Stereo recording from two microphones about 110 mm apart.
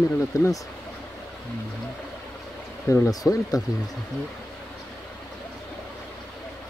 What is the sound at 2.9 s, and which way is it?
Speech, 30° left (ahead or behind).